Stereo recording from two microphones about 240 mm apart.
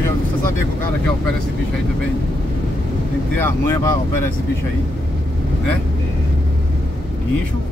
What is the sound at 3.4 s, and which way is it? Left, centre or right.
Speech, centre.